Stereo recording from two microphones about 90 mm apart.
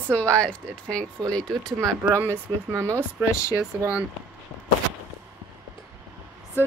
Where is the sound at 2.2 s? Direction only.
30° right (ahead or behind).